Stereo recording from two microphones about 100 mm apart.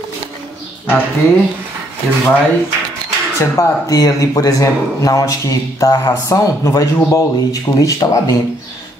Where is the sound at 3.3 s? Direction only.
35° left (ahead or behind).